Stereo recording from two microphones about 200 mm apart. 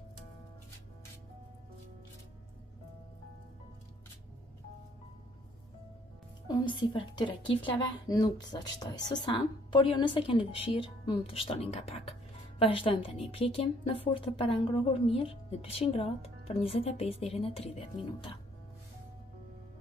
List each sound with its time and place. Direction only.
6.4 s a woman's voice: 20° left (ahead or behind)